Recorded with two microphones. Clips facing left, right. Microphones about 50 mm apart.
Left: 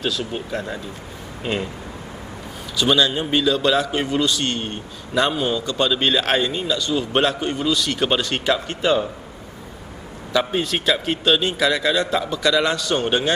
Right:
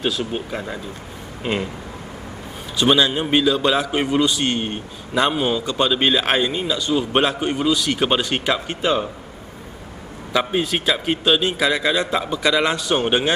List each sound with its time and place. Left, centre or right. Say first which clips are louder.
0.5 s a man's voice: left 1 dB; centre
2.8 s a man's voice: right 1 dB; centre
10.3 s a man's voice: right 1 dB; centre